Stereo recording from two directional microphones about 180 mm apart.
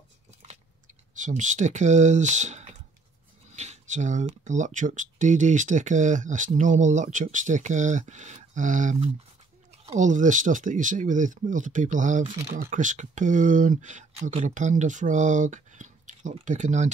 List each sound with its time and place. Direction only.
1.1 s speech: 45° right (ahead or behind)